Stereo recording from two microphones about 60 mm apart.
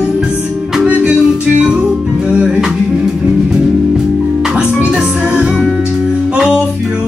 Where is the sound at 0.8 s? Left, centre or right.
Right.